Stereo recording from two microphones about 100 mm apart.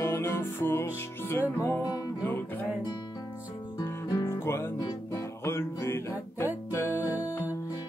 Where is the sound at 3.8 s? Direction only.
35° left (ahead or behind).